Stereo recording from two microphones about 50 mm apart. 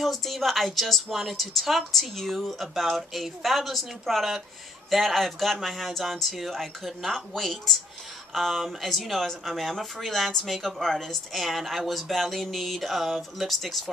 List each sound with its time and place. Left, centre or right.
0.0 s speech: centre